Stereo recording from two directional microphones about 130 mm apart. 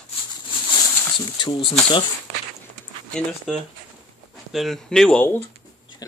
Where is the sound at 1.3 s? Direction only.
35° left (ahead or behind).